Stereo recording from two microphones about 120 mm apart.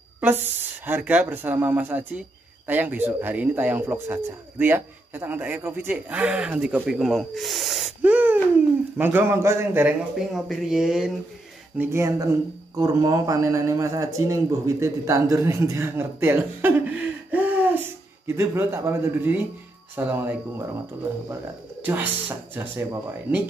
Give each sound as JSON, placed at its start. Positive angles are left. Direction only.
{"t": 0.2, "sound": "speech", "side_deg": -15}
{"t": 8.0, "sound": "speech", "side_deg": -15}
{"t": 10.3, "sound": "speech", "side_deg": -5}
{"t": 11.8, "sound": "speech", "side_deg": -25}
{"t": 21.8, "sound": "speech", "side_deg": -15}